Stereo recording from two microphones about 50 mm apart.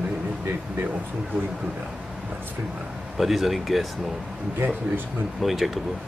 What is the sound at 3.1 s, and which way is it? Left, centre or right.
Speech, centre.